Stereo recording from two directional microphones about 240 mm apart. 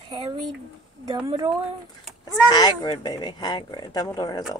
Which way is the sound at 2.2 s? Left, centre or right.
Centre.